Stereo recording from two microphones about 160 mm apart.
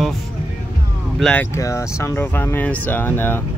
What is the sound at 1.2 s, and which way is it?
Speech, 10° left (ahead or behind).